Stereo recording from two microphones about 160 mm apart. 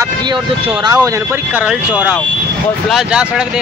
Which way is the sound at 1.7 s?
5° right (ahead or behind).